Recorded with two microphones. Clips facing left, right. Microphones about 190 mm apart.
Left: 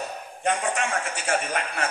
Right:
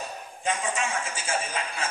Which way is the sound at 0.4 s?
65° left (ahead or behind).